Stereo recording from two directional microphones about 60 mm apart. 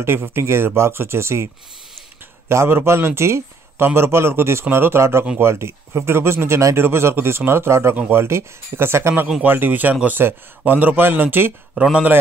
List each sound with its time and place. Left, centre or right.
0.0 s speech: right
2.5 s speech: right
9.4 s a man's voice: right
11.7 s speech: centre